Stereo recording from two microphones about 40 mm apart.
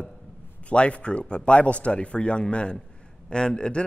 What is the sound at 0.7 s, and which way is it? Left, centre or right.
A man's voice, left.